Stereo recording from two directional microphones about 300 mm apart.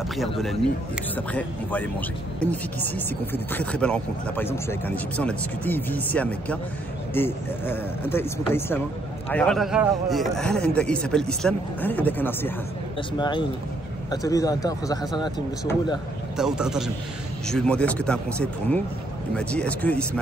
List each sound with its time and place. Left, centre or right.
0.2 s speech: centre
16.3 s speech: centre